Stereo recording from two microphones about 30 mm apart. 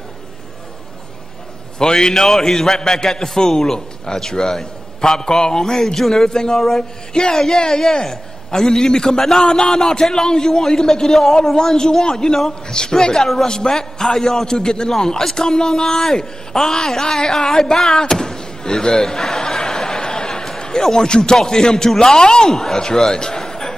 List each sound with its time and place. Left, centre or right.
1.8 s speech: left
2.2 s a man's voice: centre
5.9 s a man's voice: centre
6.2 s a man's voice: left
17.5 s a sound: centre
20.9 s speech: left
23.4 s a sound: centre